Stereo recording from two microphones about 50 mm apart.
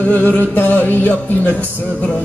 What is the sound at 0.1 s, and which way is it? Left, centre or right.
Speech, left.